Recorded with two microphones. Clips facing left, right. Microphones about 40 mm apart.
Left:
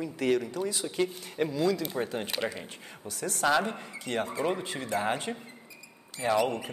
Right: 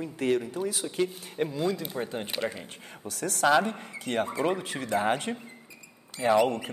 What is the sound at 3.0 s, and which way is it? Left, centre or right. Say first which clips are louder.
Speech: right 2 dB; right.